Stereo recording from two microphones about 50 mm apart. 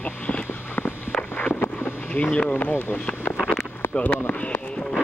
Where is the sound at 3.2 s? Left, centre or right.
Left.